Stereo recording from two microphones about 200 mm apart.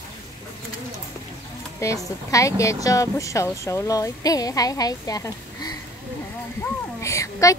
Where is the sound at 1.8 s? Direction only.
15° left (ahead or behind).